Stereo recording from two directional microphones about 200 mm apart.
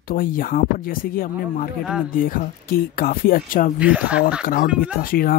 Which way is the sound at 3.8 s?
5° right (ahead or behind).